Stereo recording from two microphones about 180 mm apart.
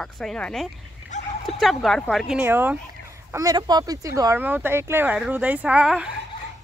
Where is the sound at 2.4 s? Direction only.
10° right (ahead or behind).